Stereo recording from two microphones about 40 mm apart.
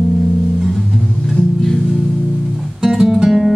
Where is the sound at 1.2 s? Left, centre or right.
Centre.